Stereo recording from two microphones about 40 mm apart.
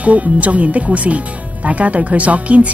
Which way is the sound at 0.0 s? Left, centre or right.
Right.